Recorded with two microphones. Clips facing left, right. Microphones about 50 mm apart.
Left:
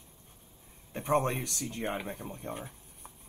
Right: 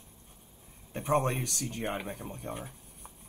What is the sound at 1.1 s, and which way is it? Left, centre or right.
Speech, right.